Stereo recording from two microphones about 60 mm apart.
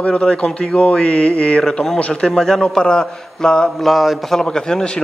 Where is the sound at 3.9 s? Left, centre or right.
Centre.